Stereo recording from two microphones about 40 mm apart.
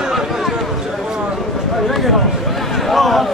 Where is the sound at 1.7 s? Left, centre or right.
Centre.